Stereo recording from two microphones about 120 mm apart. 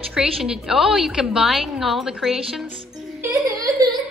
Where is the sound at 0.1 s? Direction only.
5° right (ahead or behind).